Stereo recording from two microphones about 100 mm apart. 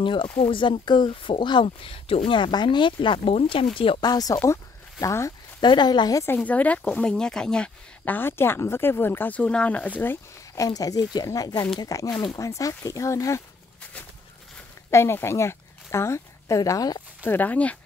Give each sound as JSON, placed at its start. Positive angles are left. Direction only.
{"t": 0.0, "sound": "speech", "side_deg": 55}
{"t": 4.0, "sound": "speech", "side_deg": 40}
{"t": 5.6, "sound": "speech", "side_deg": 50}
{"t": 6.2, "sound": "speech", "side_deg": 20}
{"t": 10.5, "sound": "speech", "side_deg": 35}
{"t": 14.9, "sound": "speech", "side_deg": 25}
{"t": 17.2, "sound": "speech", "side_deg": 20}